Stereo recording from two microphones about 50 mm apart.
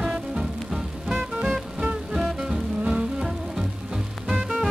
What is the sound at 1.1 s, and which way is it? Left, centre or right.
Music, right.